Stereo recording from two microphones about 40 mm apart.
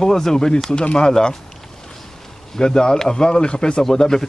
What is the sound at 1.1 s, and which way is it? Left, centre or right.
Speech, centre.